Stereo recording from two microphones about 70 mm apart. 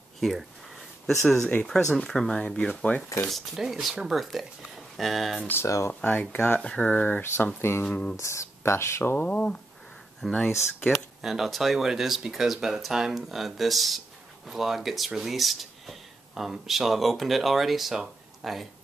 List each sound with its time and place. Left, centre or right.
0.2 s a sound: centre
1.7 s speech: centre
3.3 s speech: centre
6.0 s speech: left
7.8 s speech: centre
8.2 s speech: left
9.3 s speech: centre
10.2 s speech: centre